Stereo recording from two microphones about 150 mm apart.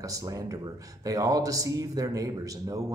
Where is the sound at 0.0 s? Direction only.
25° right (ahead or behind).